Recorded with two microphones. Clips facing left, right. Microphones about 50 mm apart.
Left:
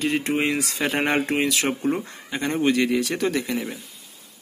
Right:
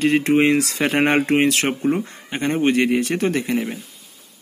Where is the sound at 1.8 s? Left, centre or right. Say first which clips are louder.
Right 4 dB; right.